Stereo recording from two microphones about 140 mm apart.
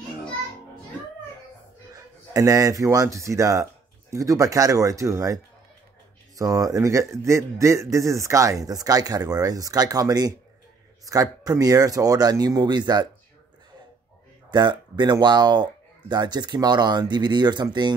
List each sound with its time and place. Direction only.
1.9 s speech: 25° right (ahead or behind)
14.5 s speech: 30° right (ahead or behind)